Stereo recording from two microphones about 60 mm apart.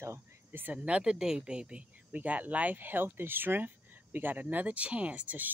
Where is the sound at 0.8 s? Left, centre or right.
Centre.